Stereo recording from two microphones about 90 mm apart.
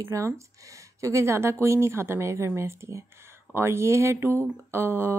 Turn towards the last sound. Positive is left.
turn(degrees=-25)  # may be behind; listen again after turning